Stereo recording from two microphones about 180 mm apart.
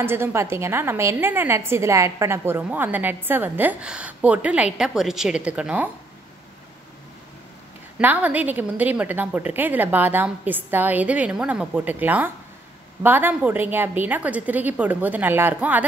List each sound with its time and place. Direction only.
0.0 s a woman's voice: 10° right (ahead or behind)
8.0 s a woman's voice: 10° right (ahead or behind)